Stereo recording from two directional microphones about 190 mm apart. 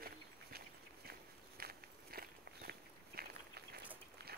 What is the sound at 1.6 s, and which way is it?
Walk, 55° right (ahead or behind).